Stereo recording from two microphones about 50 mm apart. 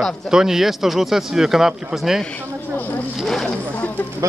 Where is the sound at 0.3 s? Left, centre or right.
Centre.